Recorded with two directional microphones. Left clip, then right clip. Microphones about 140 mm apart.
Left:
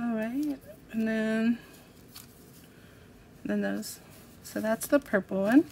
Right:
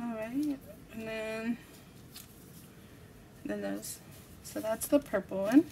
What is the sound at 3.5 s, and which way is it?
Speech, 40° left (ahead or behind).